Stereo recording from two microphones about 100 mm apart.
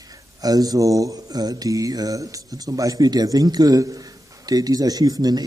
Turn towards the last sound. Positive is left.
turn(degrees=-40)  # may be behind; listen again after turning